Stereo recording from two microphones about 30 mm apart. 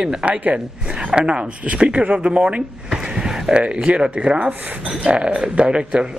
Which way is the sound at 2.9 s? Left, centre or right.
Right.